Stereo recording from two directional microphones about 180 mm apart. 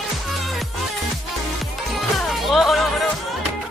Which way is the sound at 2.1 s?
Centre (ahead or behind).